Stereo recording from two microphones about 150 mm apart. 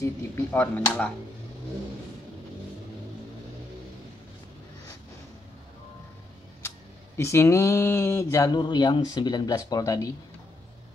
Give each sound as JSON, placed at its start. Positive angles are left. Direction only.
{"t": 0.0, "sound": "speech", "side_deg": 15}
{"t": 7.2, "sound": "speech", "side_deg": 20}
{"t": 8.5, "sound": "speech", "side_deg": 30}